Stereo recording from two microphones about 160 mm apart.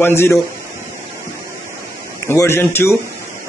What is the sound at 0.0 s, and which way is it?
Speech, 15° left (ahead or behind).